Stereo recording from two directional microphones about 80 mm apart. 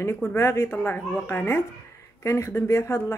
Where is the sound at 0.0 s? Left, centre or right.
Left.